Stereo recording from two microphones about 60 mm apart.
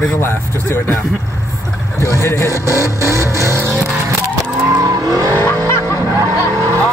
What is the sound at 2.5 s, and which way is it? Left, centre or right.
Vehicle, right.